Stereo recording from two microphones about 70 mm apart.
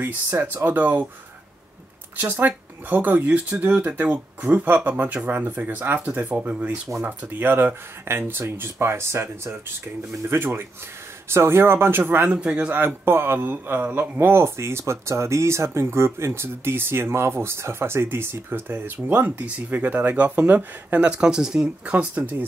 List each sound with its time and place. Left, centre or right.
0.0 s speech: right
2.1 s speech: right
12.3 s speech: centre
12.7 s speech: right
21.1 s speech: centre
21.9 s speech: right